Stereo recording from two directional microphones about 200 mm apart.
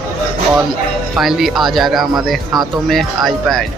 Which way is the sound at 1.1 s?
Centre (ahead or behind).